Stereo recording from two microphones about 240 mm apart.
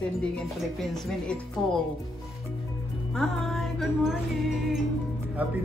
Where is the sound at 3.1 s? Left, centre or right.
Centre.